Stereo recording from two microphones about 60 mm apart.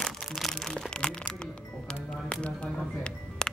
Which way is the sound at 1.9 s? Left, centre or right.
Centre.